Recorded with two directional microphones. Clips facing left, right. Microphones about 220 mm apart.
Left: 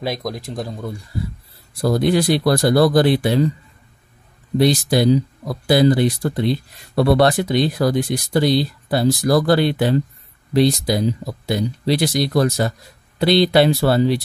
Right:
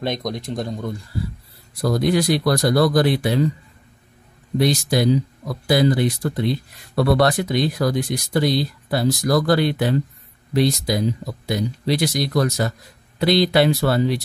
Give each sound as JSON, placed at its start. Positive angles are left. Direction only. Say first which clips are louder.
{"t": 0.0, "sound": "speech", "louder": "even", "side_deg": 5}
{"t": 1.8, "sound": "speech", "louder": "left 2 dB", "side_deg": 30}
{"t": 4.6, "sound": "speech", "louder": "left 3 dB", "side_deg": 30}